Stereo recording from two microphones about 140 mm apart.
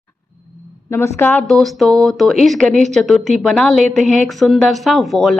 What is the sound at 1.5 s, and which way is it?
A woman's voice, centre (ahead or behind).